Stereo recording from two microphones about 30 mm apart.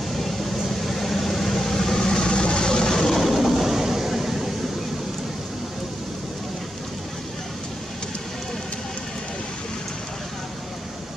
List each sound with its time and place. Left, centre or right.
0.2 s vehicle: centre
2.2 s vehicle: left
2.9 s vehicle: centre